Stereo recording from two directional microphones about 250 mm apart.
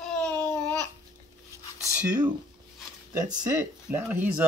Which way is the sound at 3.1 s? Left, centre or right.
Centre.